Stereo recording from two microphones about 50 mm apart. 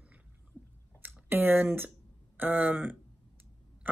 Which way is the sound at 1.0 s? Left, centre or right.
Right.